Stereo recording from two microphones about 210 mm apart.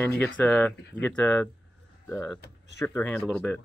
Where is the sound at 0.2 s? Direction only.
5° left (ahead or behind).